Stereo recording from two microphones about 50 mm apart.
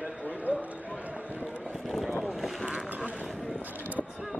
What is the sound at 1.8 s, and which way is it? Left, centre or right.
Speech, centre.